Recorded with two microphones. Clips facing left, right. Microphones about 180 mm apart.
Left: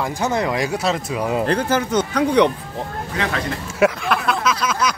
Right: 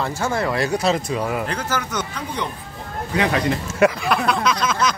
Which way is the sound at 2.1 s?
80° left.